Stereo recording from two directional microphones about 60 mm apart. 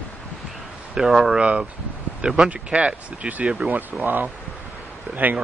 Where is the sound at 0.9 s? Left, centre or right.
Centre.